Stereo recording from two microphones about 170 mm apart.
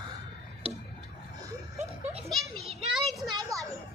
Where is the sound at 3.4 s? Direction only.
20° right (ahead or behind).